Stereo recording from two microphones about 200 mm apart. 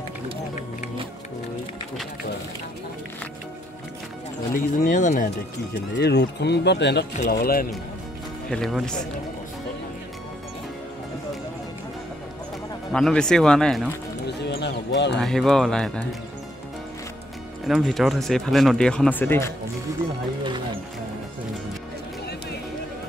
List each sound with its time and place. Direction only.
4.8 s speech: 40° left (ahead or behind)
5.9 s speech: 55° left (ahead or behind)
8.5 s speech: centre (ahead or behind)
12.9 s speech: 5° left (ahead or behind)
14.2 s a sound: 55° left (ahead or behind)
15.1 s speech: centre (ahead or behind)
17.6 s speech: centre (ahead or behind)
20.4 s music: 25° right (ahead or behind)